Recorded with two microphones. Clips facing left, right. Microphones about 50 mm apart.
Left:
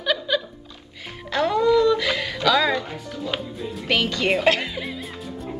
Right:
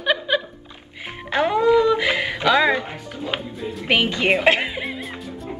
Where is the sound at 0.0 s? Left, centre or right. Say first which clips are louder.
Right 2 dB; right.